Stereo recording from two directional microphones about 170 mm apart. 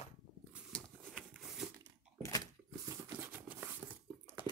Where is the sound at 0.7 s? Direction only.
Centre (ahead or behind).